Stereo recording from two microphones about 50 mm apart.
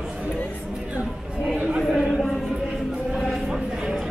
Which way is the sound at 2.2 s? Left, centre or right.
Centre.